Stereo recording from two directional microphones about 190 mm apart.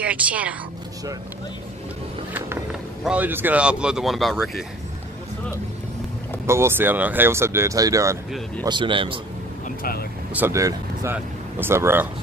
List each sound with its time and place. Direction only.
0.0 s a woman's voice: 5° right (ahead or behind)
2.3 s speech: 5° right (ahead or behind)
6.4 s speech: 15° right (ahead or behind)
10.3 s speech: 15° right (ahead or behind)